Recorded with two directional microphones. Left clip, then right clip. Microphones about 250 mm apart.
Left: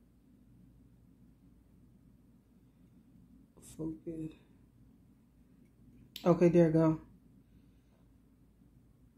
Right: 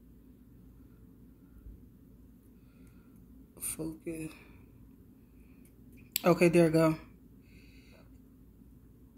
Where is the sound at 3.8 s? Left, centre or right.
Centre.